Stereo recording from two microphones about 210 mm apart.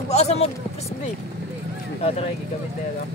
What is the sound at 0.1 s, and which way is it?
Speech, 30° left (ahead or behind).